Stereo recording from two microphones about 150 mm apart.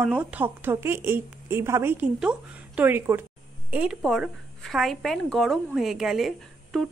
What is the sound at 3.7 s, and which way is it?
A woman's voice, 5° right (ahead or behind).